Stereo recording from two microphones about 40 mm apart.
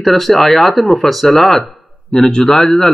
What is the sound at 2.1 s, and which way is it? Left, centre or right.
Speech, left.